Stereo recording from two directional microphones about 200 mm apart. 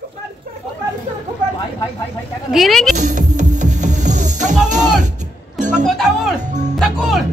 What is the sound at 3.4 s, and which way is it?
Music, 40° right (ahead or behind).